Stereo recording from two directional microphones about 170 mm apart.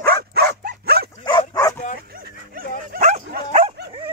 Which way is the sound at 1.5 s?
20° left (ahead or behind).